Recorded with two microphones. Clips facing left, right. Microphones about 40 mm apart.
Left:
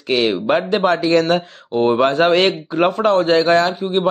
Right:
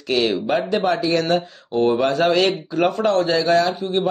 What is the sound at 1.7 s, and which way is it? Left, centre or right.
A man's voice, left.